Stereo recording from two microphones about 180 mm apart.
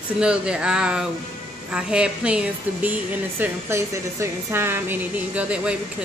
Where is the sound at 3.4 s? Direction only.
15° right (ahead or behind).